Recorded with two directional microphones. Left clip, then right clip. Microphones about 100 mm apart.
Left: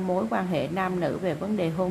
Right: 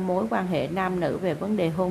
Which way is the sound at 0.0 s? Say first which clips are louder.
Right 1 dB; 15° right (ahead or behind).